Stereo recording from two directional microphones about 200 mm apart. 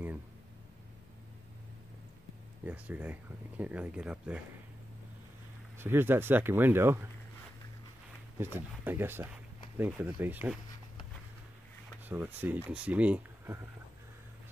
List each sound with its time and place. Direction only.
2.6 s speech: 10° right (ahead or behind)
5.8 s speech: 10° right (ahead or behind)
8.5 s speech: 10° right (ahead or behind)
12.1 s speech: 10° right (ahead or behind)